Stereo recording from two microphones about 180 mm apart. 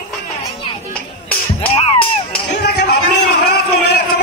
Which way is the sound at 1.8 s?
30° left (ahead or behind).